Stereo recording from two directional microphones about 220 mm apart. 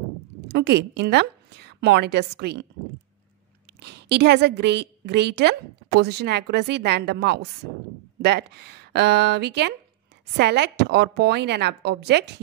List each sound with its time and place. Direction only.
0.4 s a woman's voice: 50° right (ahead or behind)
3.8 s a woman's voice: 50° right (ahead or behind)